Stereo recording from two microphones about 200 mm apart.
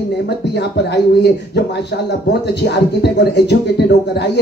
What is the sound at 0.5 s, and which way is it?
Speech, 55° left (ahead or behind).